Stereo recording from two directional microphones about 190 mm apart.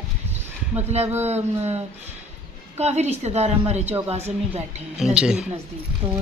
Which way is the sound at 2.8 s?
35° right (ahead or behind).